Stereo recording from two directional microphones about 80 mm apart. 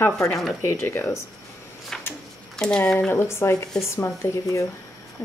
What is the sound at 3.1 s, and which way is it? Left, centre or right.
Speech, left.